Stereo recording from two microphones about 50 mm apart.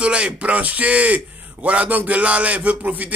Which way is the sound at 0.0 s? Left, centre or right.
Right.